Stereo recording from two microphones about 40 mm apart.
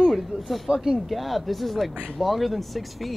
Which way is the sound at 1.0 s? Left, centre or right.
Centre.